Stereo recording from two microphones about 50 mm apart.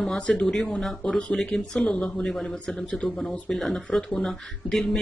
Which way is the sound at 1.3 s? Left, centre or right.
Centre.